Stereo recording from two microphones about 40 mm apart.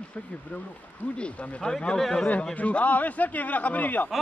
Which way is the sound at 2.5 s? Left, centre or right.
Left.